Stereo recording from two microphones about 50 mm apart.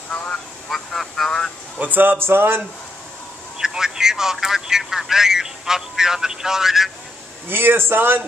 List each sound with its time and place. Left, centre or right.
0.7 s speech: centre
1.8 s speech: right
3.5 s speech: centre
7.4 s speech: right